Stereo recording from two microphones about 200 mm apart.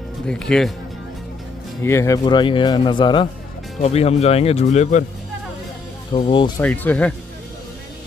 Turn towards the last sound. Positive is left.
turn(degrees=10)  # may be behind; listen again after turning